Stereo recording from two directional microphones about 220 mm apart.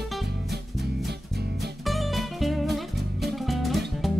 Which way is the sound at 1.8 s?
Centre (ahead or behind).